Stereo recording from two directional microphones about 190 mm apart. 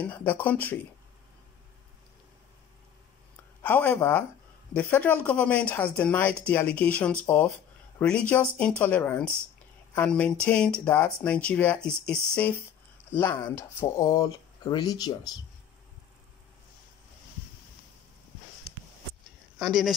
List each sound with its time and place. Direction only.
0.0 s speech: 10° left (ahead or behind)
3.6 s speech: 10° left (ahead or behind)
19.6 s speech: centre (ahead or behind)